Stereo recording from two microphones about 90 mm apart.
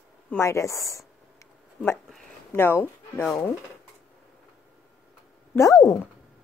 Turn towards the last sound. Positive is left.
turn(degrees=35)  # may be behind; listen again after turning